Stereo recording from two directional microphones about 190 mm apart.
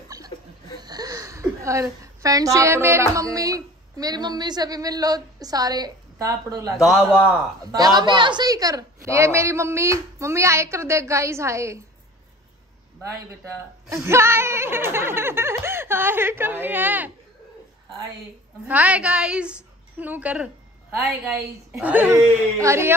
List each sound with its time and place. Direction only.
0.7 s a woman's voice: 20° right (ahead or behind)
6.8 s a man's voice: centre (ahead or behind)
8.0 s a woman's voice: 25° right (ahead or behind)
13.8 s a woman's voice: 15° right (ahead or behind)
18.7 s a woman's voice: 5° right (ahead or behind)